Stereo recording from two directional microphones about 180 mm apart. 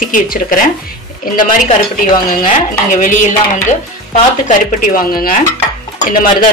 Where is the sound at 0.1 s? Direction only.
50° left (ahead or behind).